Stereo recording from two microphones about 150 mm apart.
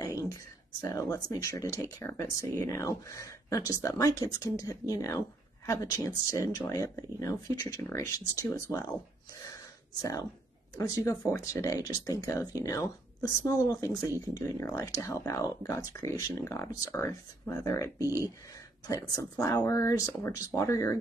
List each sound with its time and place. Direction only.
0.0 s a sound: 25° left (ahead or behind)
0.7 s speech: 25° left (ahead or behind)
11.3 s speech: 20° left (ahead or behind)
18.0 s speech: 20° right (ahead or behind)
18.9 s speech: 25° left (ahead or behind)